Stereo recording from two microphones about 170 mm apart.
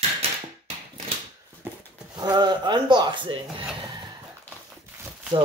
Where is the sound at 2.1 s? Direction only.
25° right (ahead or behind).